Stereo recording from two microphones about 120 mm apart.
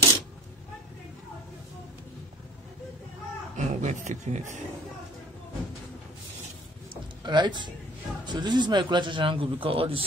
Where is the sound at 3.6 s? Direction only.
80° right.